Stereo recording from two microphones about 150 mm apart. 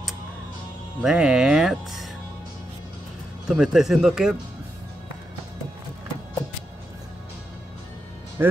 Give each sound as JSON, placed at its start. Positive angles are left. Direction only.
{"t": 1.0, "sound": "speech", "side_deg": -5}
{"t": 3.4, "sound": "speech", "side_deg": -5}
{"t": 8.4, "sound": "a man's voice", "side_deg": -20}